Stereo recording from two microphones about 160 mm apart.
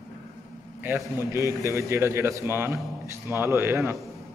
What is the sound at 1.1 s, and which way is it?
A man's voice, 20° right (ahead or behind).